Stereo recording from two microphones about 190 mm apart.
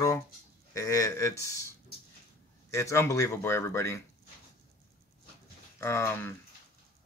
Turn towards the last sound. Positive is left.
turn(degrees=10)  # may be behind; listen again after turning